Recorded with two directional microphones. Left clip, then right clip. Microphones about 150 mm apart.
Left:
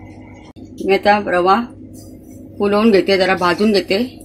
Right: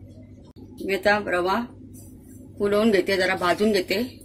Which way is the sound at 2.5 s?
40° left (ahead or behind).